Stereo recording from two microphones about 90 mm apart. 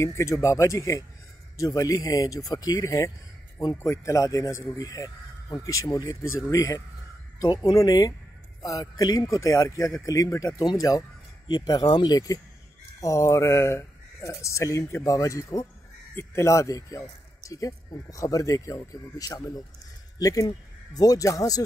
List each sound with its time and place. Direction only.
0.0 s speech: 35° left (ahead or behind)
11.4 s speech: 50° left (ahead or behind)
13.0 s speech: 35° left (ahead or behind)